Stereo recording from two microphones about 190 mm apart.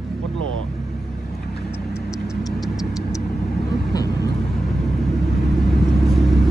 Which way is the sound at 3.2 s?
55° left (ahead or behind).